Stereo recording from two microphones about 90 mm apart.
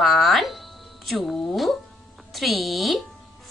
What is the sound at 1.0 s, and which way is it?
Speech, centre (ahead or behind).